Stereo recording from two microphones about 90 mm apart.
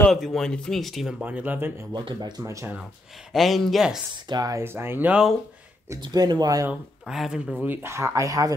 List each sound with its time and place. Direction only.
0.1 s speech: centre (ahead or behind)
1.2 s speech: 20° right (ahead or behind)
2.0 s speech: 50° right (ahead or behind)
2.4 s speech: 35° right (ahead or behind)
3.3 s speech: centre (ahead or behind)
4.1 s speech: 50° right (ahead or behind)
4.6 s speech: 25° right (ahead or behind)
5.9 s speech: 55° right (ahead or behind)
6.7 s speech: 5° right (ahead or behind)
7.6 s speech: 25° right (ahead or behind); by 8.5 s 40° right (ahead or behind)